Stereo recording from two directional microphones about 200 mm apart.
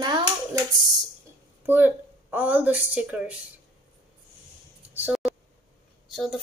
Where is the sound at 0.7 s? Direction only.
20° right (ahead or behind).